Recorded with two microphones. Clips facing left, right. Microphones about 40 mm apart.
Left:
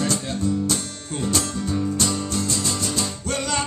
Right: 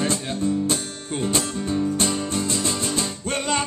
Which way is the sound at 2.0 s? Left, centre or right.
Right.